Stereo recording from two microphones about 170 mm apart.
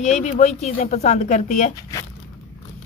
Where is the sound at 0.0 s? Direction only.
45° left (ahead or behind).